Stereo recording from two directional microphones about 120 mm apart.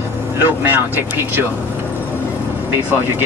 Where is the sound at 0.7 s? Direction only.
15° right (ahead or behind).